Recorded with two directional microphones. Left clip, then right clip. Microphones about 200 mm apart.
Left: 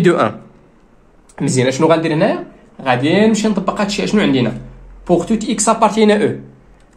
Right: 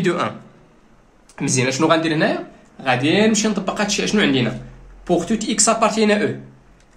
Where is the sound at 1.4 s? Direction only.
25° left (ahead or behind).